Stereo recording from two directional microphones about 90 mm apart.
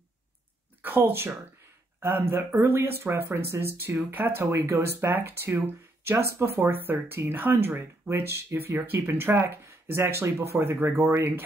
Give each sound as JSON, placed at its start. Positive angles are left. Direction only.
{"t": 0.8, "sound": "speech", "side_deg": -20}